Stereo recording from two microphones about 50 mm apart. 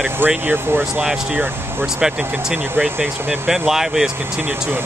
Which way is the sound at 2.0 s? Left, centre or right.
Centre.